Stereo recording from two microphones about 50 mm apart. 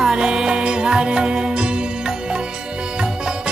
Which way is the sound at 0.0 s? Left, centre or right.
Centre.